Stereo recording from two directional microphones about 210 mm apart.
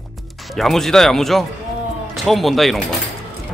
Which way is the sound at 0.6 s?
Centre (ahead or behind).